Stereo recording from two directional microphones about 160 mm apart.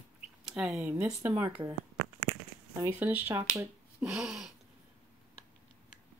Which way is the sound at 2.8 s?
10° right (ahead or behind).